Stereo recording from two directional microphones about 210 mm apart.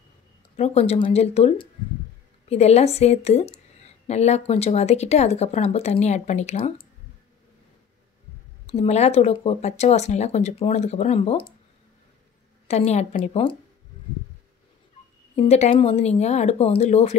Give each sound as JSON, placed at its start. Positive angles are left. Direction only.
{"t": 0.6, "sound": "speech", "side_deg": 30}
{"t": 8.6, "sound": "speech", "side_deg": 30}
{"t": 12.6, "sound": "speech", "side_deg": 30}
{"t": 15.3, "sound": "speech", "side_deg": 30}